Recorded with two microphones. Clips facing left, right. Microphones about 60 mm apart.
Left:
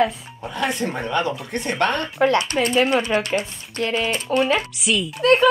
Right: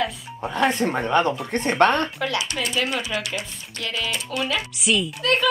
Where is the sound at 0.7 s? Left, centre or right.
Right.